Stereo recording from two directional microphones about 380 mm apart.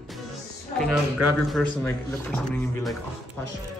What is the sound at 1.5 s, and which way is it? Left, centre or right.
Speech, centre.